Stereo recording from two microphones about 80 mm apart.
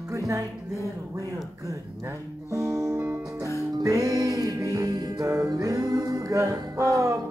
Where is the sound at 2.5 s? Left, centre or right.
Right.